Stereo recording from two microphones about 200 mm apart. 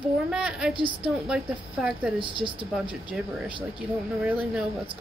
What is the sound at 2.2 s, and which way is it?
Speech, 25° right (ahead or behind).